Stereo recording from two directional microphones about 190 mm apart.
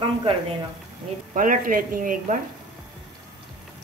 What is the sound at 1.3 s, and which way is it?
Speech, 45° right (ahead or behind).